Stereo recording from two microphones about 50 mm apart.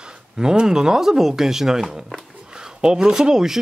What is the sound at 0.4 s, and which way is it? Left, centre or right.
Speech, centre.